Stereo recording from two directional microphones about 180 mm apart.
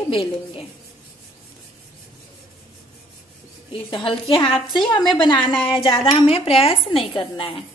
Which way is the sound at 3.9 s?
30° left (ahead or behind).